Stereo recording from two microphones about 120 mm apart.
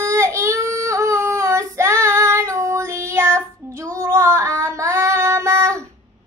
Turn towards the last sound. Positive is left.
turn(degrees=-25)  # may be behind; listen again after turning